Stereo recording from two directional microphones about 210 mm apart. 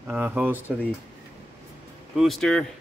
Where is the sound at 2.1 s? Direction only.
Centre (ahead or behind).